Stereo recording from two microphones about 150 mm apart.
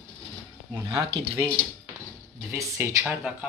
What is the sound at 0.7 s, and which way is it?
Speech, 20° right (ahead or behind).